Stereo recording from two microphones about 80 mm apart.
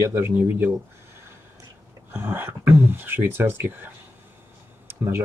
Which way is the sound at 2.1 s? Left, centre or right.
Right.